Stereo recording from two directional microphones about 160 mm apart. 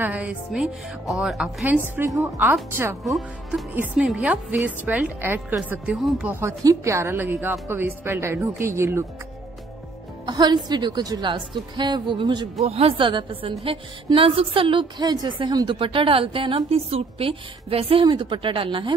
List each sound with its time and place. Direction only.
0.0 s speech: 10° right (ahead or behind)
6.4 s speech: 20° right (ahead or behind)
10.2 s a woman's voice: 25° right (ahead or behind)